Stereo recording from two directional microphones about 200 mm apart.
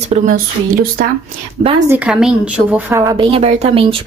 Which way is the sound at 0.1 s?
45° right (ahead or behind).